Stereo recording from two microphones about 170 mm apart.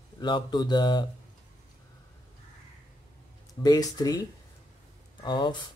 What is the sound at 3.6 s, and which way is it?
Speech, 20° left (ahead or behind).